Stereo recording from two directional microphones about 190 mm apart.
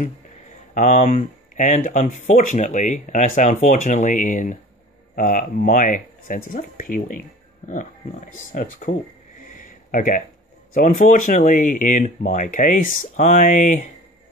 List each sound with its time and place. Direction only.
0.7 s speech: 40° left (ahead or behind)
9.5 s a sound: 45° left (ahead or behind)
10.7 s speech: 45° left (ahead or behind)